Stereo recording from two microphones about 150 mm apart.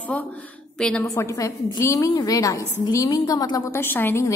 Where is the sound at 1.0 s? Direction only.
20° left (ahead or behind).